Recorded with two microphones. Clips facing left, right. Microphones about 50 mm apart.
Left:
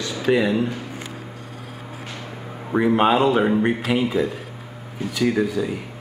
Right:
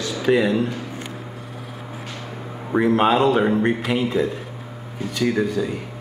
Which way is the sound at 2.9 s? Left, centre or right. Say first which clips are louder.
Even; centre.